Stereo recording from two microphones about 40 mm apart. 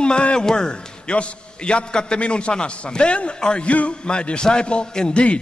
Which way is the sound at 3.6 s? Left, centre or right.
Left.